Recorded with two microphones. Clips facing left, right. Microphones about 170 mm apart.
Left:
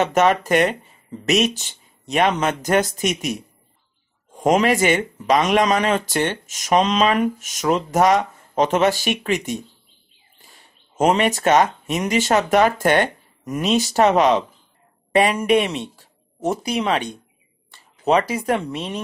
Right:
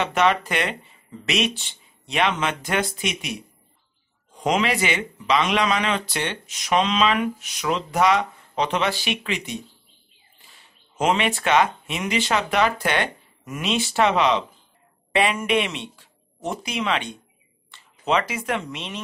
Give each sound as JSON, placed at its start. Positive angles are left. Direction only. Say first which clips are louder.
{"t": 0.0, "sound": "speech", "louder": "left 4 dB", "side_deg": 45}